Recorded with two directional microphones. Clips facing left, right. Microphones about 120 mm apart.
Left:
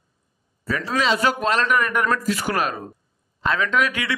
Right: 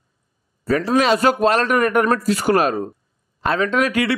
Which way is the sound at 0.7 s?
45° right (ahead or behind).